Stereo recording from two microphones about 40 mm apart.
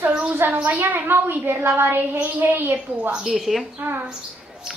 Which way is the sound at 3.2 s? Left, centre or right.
Centre.